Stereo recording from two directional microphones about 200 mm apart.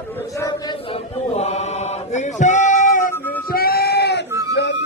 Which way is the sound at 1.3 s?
35° left (ahead or behind).